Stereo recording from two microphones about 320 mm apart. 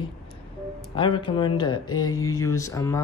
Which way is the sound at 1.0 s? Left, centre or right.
Centre.